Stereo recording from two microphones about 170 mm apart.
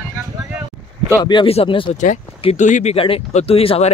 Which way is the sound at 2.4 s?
40° left (ahead or behind).